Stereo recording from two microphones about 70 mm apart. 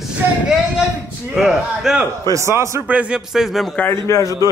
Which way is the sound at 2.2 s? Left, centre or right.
Right.